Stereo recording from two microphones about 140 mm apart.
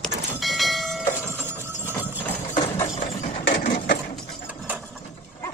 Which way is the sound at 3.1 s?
50° left (ahead or behind).